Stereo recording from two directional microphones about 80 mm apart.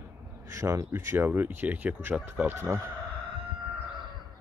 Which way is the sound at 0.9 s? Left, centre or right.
Right.